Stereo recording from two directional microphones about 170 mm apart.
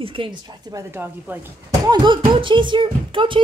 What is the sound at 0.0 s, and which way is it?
Speech, 30° right (ahead or behind).